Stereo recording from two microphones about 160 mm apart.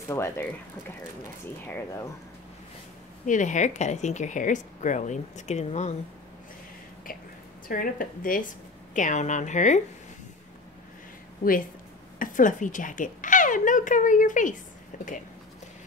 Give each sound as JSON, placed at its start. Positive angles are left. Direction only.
{"t": 0.1, "sound": "speech", "side_deg": 15}
{"t": 3.3, "sound": "speech", "side_deg": 50}
{"t": 7.6, "sound": "speech", "side_deg": 60}
{"t": 11.4, "sound": "a woman's voice", "side_deg": 65}